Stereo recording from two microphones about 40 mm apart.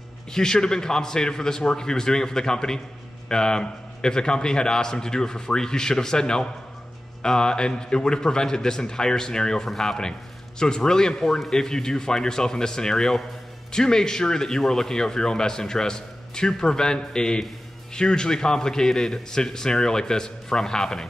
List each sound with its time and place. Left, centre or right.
0.3 s speech: centre